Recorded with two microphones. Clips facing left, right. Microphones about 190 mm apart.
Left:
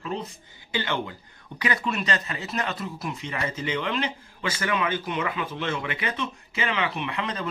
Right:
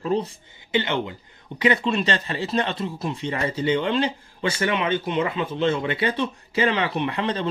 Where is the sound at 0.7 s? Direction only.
20° right (ahead or behind).